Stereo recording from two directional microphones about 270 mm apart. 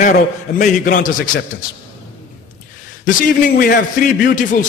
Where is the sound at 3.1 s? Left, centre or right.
Left.